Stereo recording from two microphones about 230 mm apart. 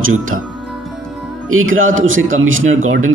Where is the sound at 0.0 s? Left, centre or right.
Right.